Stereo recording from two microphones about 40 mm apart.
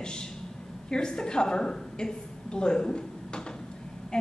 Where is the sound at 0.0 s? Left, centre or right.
Centre.